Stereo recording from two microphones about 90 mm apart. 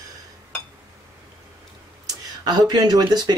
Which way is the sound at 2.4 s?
50° right (ahead or behind).